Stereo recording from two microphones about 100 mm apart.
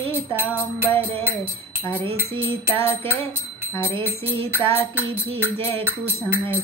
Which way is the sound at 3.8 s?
20° left (ahead or behind).